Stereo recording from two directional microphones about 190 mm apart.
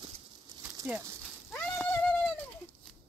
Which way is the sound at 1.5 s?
5° left (ahead or behind).